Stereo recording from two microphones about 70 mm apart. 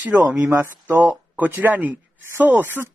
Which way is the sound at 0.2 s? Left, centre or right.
Right.